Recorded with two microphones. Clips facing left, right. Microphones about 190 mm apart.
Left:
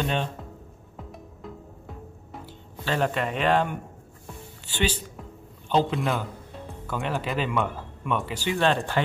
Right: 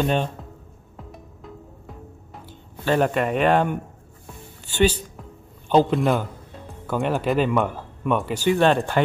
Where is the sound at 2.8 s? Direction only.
50° right (ahead or behind).